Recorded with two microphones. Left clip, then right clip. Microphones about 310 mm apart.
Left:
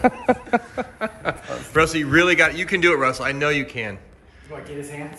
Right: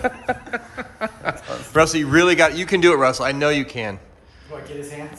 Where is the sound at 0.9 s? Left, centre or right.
Centre.